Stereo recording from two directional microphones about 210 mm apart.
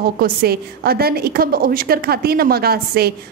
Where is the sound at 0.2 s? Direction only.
45° right (ahead or behind).